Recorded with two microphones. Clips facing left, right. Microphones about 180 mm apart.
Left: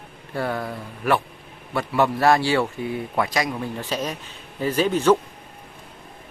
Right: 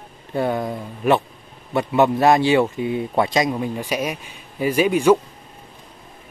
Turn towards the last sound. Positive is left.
turn(degrees=-10)  # may be behind; listen again after turning